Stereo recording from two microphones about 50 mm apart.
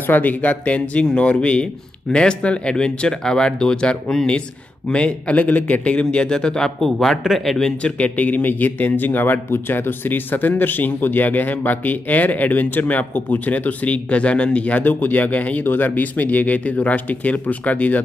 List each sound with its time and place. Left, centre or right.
0.0 s a man's voice: left; by 7.6 s centre
7.6 s speech: left